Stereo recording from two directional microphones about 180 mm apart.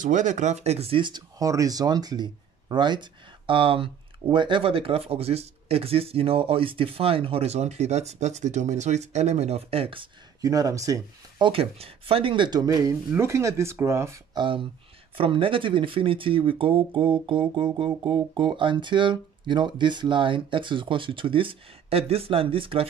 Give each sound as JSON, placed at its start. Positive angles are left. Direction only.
{"t": 0.0, "sound": "speech", "side_deg": -45}
{"t": 10.4, "sound": "speech", "side_deg": -20}
{"t": 14.4, "sound": "speech", "side_deg": -30}